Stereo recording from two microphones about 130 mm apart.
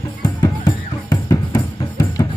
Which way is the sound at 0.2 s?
30° left (ahead or behind).